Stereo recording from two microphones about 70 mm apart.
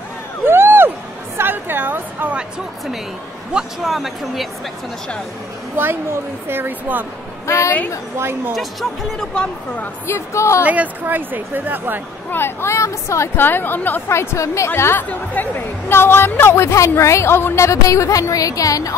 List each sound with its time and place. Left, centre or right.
0.5 s a sound: right
3.5 s speech: centre
6.4 s speech: right
7.4 s speech: left
8.2 s speech: right
9.3 s speech: centre
10.0 s speech: left
10.6 s a woman's voice: right
12.3 s a woman's voice: left
13.4 s a woman's voice: left
14.0 s a woman's voice: left